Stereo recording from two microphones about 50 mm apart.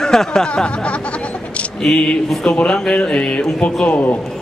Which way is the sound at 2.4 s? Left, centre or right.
Centre.